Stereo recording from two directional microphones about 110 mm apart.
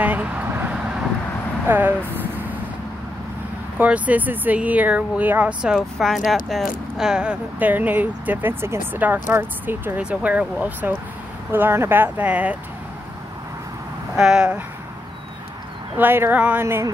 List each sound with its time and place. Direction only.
0.0 s vehicle: 15° right (ahead or behind)
1.7 s speech: 15° right (ahead or behind)
3.7 s speech: 15° right (ahead or behind)
14.1 s speech: 5° right (ahead or behind)
16.0 s speech: 20° right (ahead or behind)